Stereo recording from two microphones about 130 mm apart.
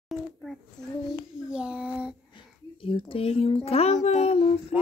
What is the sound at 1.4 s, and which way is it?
Child singing, 5° right (ahead or behind).